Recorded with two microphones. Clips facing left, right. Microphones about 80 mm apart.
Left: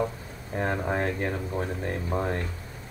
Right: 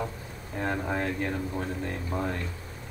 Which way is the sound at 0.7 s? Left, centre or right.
Left.